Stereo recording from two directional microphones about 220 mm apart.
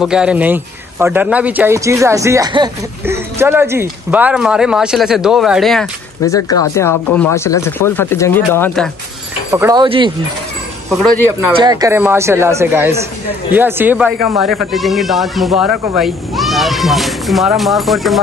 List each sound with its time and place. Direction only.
0.0 s a man's voice: 5° right (ahead or behind)
6.2 s speech: 15° left (ahead or behind)
9.5 s speech: 15° right (ahead or behind)
10.9 s speech: 5° left (ahead or behind)
11.5 s a man's voice: 20° right (ahead or behind); by 18.2 s centre (ahead or behind)